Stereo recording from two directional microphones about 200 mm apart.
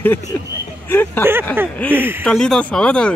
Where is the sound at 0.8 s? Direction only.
10° left (ahead or behind).